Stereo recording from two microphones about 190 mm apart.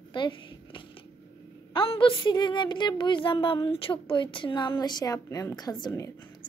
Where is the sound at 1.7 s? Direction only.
30° left (ahead or behind).